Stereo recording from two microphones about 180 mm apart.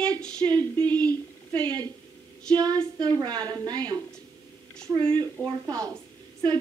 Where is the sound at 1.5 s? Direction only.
25° right (ahead or behind).